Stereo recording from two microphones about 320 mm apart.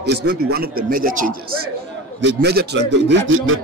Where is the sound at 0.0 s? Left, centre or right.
Right.